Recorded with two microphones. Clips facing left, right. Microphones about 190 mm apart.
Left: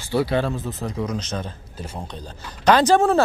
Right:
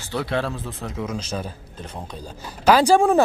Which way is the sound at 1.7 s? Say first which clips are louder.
Left 3 dB; 5° left (ahead or behind).